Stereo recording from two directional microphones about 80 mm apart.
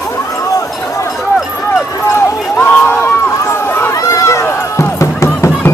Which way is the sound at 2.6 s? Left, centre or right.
Left.